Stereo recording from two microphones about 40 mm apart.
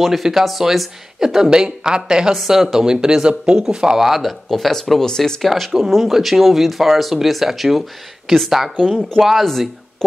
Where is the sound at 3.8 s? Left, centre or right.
Centre.